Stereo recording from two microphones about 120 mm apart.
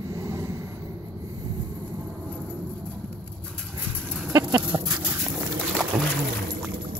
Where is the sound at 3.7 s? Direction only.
15° right (ahead or behind).